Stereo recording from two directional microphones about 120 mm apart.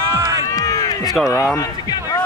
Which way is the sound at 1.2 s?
30° left (ahead or behind).